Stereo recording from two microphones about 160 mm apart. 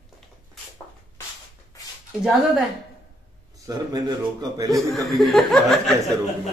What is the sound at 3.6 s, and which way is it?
A man's voice, 25° right (ahead or behind).